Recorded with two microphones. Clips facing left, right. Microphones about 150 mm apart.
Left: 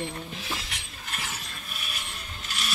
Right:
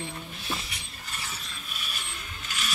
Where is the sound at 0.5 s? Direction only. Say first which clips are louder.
Even; 90° left.